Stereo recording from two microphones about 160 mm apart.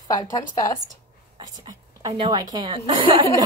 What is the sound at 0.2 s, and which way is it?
Speech, 20° left (ahead or behind).